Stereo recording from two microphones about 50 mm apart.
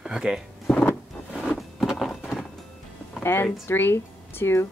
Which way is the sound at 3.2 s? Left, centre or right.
Left.